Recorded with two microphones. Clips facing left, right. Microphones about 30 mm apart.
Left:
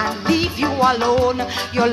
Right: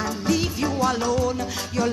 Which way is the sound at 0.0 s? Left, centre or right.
Left.